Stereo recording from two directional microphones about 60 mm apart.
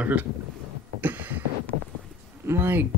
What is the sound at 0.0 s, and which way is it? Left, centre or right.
Speech, right.